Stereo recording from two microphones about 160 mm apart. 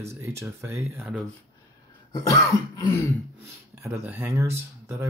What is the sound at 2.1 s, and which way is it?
Throat clearing, 25° left (ahead or behind).